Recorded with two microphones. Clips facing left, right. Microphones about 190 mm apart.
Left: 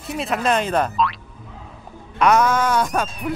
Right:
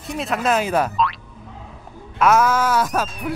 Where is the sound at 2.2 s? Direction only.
5° right (ahead or behind).